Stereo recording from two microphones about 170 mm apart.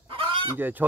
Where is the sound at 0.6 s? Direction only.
10° right (ahead or behind).